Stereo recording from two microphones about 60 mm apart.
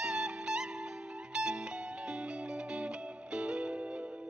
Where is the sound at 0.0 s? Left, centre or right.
Centre.